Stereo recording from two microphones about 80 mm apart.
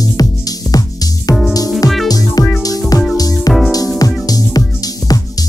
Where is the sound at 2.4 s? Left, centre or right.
Left.